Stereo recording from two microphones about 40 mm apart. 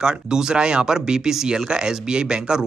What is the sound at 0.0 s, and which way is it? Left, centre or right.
Speech, centre.